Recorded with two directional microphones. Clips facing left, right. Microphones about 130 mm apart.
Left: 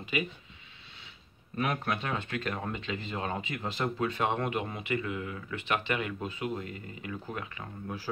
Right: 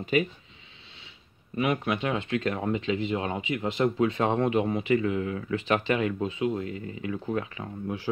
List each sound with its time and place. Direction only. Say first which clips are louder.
1.6 s speech: right 5 dB; 10° right (ahead or behind)
2.1 s speech: right 6 dB; 25° right (ahead or behind)